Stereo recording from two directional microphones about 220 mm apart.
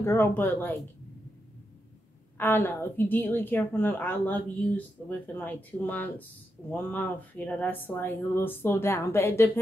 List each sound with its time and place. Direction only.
0.0 s a woman's voice: 10° left (ahead or behind)
2.3 s a woman's voice: 10° left (ahead or behind)